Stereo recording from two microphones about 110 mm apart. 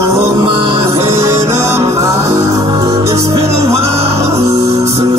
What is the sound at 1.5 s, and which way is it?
Music, 25° right (ahead or behind).